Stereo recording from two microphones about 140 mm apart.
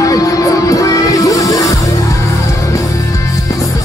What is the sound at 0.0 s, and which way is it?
Music, 25° left (ahead or behind).